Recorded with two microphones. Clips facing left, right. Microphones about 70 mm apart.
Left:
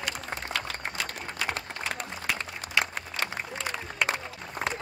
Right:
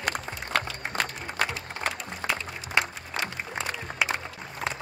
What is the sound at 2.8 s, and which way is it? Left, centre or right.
Applause, right.